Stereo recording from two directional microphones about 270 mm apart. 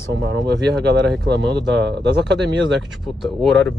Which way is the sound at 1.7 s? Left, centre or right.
Centre.